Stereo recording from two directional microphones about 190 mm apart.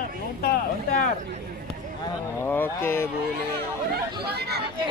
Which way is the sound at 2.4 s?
10° left (ahead or behind).